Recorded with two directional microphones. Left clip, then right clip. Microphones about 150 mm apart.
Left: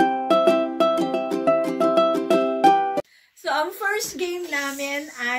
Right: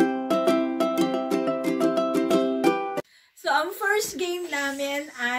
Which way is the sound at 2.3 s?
15° left (ahead or behind).